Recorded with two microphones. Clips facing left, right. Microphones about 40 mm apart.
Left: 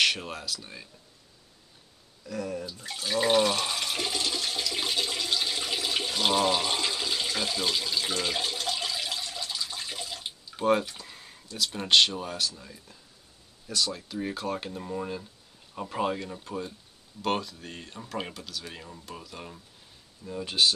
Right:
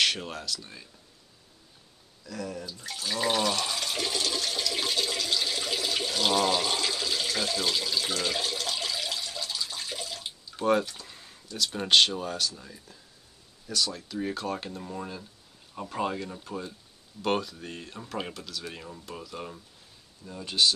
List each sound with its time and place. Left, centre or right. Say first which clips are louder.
0.0 s speech: left 1 dB; centre
2.2 s speech: left 3 dB; centre
4.2 s toilet flush: right 1 dB; centre
11.1 s speech: even; centre
13.7 s speech: even; centre
20.2 s speech: even; centre